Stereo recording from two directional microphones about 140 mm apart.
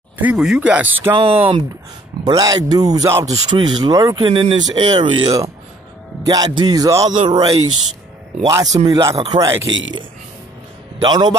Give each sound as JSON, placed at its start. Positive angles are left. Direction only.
{"t": 0.2, "sound": "speech", "side_deg": -5}
{"t": 1.1, "sound": "speech", "side_deg": -40}
{"t": 2.2, "sound": "speech", "side_deg": -25}
{"t": 3.4, "sound": "speech", "side_deg": -30}
{"t": 11.0, "sound": "speech", "side_deg": -30}